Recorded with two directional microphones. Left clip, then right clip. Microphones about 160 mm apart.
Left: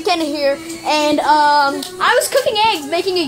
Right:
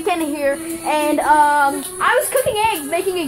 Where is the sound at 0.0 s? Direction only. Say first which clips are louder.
Left 3 dB; 20° left (ahead or behind).